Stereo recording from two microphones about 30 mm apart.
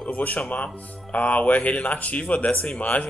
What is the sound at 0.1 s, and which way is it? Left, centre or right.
Music, left.